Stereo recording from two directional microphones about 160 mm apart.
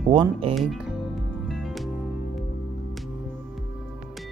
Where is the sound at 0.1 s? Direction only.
35° right (ahead or behind).